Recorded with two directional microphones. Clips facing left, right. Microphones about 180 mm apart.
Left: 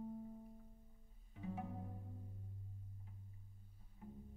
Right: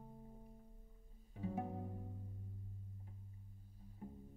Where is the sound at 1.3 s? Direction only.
40° right (ahead or behind).